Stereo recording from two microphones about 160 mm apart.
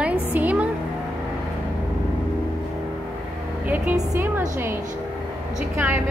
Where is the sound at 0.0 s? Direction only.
10° right (ahead or behind).